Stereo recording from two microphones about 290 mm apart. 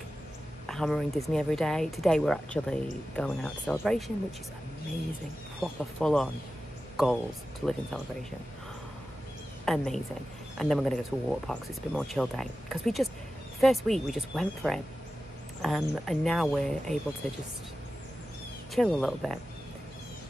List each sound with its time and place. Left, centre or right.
0.7 s speech: centre
5.6 s speech: centre
7.6 s speech: centre
9.7 s speech: centre
18.8 s speech: centre